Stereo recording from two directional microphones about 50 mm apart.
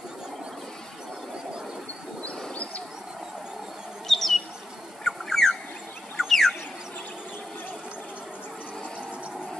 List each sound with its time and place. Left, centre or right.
2.5 s a sound: left
4.1 s bee: centre
5.0 s bird: centre
6.2 s chicken: centre